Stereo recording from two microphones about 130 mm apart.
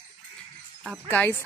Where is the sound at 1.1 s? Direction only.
15° left (ahead or behind).